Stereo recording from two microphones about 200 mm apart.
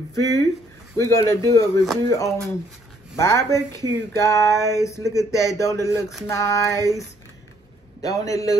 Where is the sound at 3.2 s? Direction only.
15° left (ahead or behind).